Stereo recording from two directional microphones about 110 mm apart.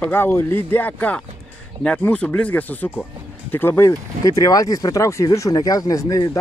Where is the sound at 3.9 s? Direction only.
30° left (ahead or behind).